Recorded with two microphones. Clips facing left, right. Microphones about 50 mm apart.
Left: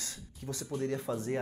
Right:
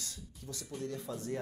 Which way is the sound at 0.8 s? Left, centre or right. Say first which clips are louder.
Left 6 dB; left.